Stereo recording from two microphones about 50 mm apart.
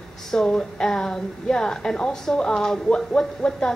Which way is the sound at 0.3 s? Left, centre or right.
Centre.